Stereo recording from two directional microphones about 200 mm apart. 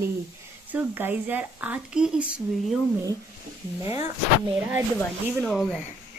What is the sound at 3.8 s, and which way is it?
Speech, 15° right (ahead or behind).